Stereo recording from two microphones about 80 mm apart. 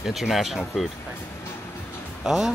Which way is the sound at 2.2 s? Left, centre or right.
Centre.